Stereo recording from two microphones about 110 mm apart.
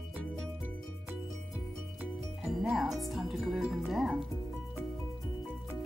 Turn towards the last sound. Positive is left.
turn(degrees=0)  # may be behind; listen again after turning